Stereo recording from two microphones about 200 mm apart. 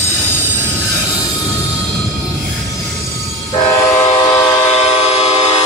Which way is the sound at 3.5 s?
30° left (ahead or behind).